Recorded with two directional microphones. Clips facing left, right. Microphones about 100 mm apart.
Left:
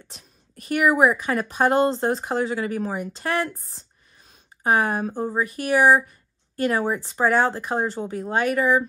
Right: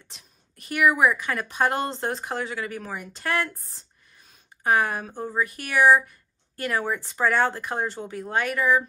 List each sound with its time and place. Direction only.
0.1 s speech: 40° left (ahead or behind)
4.6 s speech: 35° left (ahead or behind)
5.1 s speech: 25° left (ahead or behind)